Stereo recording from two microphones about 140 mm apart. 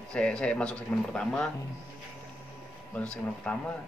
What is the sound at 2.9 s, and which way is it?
Speech, 10° left (ahead or behind).